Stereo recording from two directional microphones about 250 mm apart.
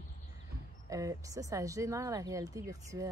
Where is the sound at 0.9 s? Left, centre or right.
Centre.